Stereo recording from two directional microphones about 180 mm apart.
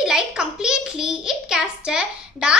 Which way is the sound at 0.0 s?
5° right (ahead or behind).